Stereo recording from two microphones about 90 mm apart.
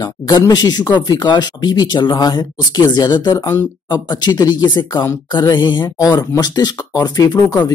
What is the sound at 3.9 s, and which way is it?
Speech, 50° left (ahead or behind).